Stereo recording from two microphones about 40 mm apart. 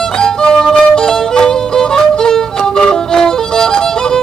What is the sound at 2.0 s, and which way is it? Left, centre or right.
Music, centre.